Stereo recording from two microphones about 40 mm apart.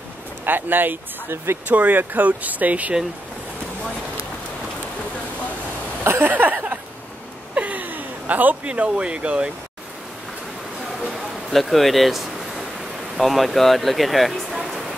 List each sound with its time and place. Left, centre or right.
0.5 s speech: right
1.3 s speech: right
1.7 s speech: right
6.2 s a sound: right
8.6 s speech: right
11.1 s a sound: centre
13.2 s speech: centre